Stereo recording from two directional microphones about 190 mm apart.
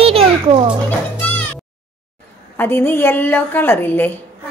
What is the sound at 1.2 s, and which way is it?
Music, 10° left (ahead or behind).